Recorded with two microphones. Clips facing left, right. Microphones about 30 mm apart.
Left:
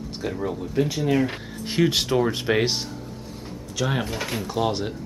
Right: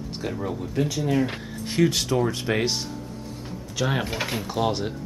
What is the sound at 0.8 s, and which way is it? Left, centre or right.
Speech, centre.